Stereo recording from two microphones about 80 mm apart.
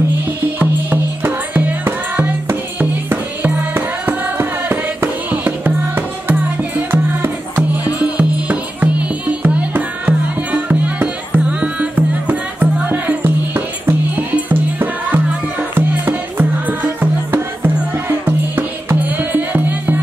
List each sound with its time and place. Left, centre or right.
0.4 s music: right